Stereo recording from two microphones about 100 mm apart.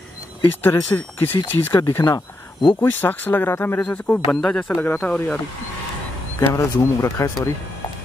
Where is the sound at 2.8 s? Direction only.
20° left (ahead or behind).